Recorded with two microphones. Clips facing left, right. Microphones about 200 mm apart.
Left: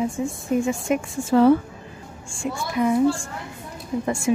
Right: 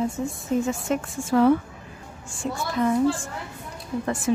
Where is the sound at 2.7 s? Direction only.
10° left (ahead or behind).